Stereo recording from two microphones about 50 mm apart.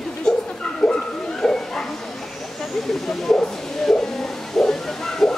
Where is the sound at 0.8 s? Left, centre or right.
Centre.